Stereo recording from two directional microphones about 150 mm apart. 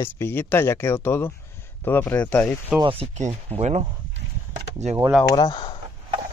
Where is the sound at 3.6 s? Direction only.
45° right (ahead or behind).